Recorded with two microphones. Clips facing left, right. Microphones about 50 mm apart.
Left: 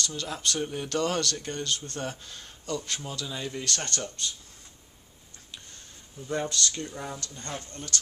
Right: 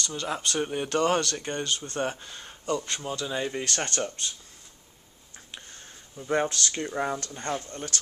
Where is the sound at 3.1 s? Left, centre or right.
Right.